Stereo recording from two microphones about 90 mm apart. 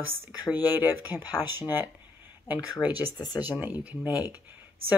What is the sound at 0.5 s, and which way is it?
Speech, 20° right (ahead or behind).